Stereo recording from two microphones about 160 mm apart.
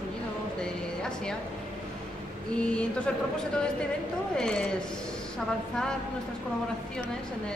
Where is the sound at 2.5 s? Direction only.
5° left (ahead or behind).